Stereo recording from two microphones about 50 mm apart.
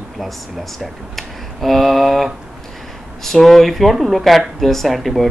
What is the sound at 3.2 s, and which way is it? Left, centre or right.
Speech, centre.